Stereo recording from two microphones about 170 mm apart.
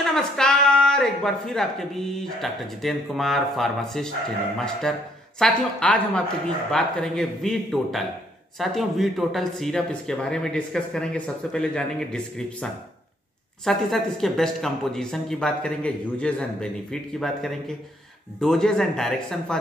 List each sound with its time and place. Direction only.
0.0 s a woman's voice: 5° left (ahead or behind)
13.7 s a woman's voice: centre (ahead or behind)